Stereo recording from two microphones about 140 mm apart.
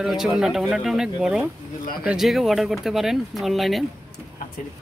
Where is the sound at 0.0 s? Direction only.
Centre (ahead or behind).